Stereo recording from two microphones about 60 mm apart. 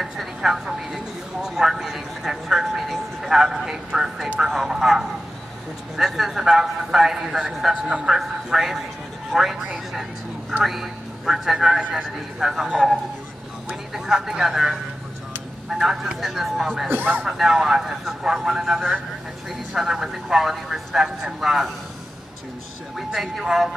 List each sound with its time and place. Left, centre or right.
0.0 s a man's voice: centre
16.9 s speech: right
17.3 s a man's voice: centre
22.9 s a man's voice: centre